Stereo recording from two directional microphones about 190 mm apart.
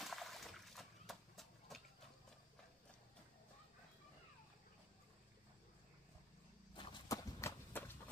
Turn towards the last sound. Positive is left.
turn(degrees=10)  # may be behind; listen again after turning